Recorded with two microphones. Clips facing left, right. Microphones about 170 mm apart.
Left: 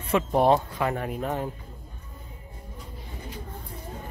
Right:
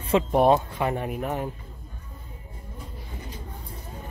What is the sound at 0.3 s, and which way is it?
Speech, 20° right (ahead or behind).